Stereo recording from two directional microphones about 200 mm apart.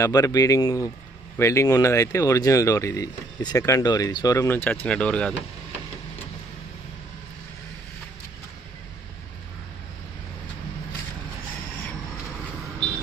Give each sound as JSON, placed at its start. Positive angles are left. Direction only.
{"t": 0.0, "sound": "speech", "side_deg": 15}